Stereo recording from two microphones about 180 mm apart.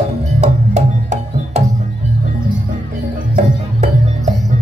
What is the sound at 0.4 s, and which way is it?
Music, 40° right (ahead or behind).